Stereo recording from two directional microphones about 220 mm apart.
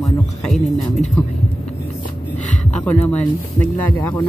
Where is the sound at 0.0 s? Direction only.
Centre (ahead or behind).